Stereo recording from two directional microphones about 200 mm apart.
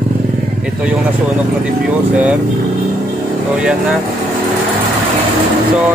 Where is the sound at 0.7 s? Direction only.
5° right (ahead or behind).